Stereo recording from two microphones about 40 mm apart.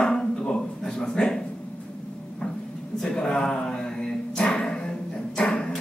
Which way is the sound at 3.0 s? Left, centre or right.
Left.